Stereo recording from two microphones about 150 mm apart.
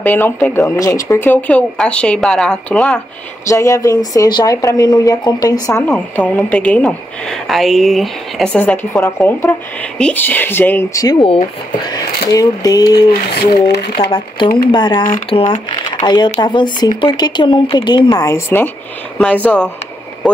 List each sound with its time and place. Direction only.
0.0 s speech: 10° left (ahead or behind)
3.4 s speech: 20° left (ahead or behind); by 8.5 s centre (ahead or behind)
8.5 s speech: 15° left (ahead or behind)